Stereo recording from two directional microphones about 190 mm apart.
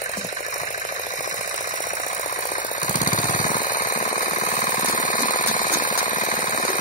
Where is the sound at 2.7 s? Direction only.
40° left (ahead or behind).